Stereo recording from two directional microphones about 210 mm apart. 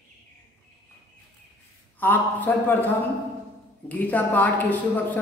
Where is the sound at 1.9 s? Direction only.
10° left (ahead or behind).